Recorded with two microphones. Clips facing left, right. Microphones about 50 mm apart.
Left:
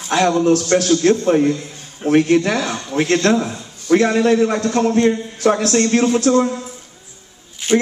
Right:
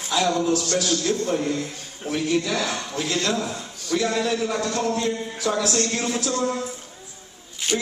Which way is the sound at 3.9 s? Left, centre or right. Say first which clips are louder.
Left 9 dB; left.